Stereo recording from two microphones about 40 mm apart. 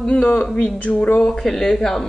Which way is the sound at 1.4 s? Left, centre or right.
Centre.